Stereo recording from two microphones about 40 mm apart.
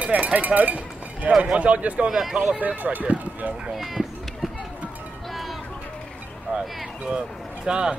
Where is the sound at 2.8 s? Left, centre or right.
Right.